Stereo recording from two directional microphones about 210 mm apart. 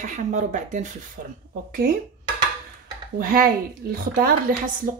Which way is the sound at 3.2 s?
45° right (ahead or behind).